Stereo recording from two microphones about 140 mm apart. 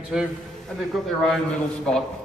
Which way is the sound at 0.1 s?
5° right (ahead or behind).